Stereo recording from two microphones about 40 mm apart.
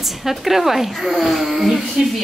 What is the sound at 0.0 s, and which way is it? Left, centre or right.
A woman's voice, centre.